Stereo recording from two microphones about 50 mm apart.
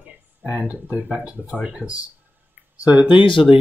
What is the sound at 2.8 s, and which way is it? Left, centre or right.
Speech, right.